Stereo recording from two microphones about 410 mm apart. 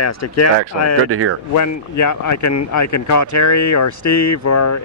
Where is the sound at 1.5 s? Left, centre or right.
Left.